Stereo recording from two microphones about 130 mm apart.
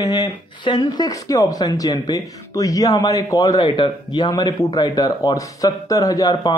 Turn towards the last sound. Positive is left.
turn(degrees=30)  # may be behind; listen again after turning